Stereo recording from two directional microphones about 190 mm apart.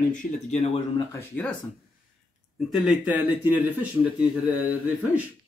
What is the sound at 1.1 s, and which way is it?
Speech, 10° left (ahead or behind).